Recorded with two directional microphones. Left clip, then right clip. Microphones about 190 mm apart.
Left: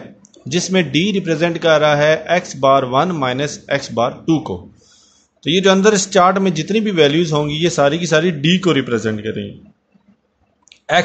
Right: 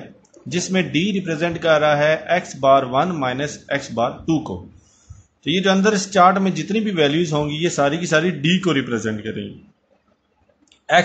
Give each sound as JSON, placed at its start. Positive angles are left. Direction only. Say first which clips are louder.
{"t": 0.5, "sound": "a man's voice", "louder": "left 5 dB", "side_deg": 25}